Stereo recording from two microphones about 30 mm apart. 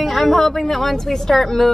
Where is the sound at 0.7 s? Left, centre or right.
Centre.